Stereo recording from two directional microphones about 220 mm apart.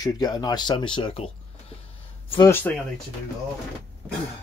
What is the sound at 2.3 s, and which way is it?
Speech, 15° left (ahead or behind).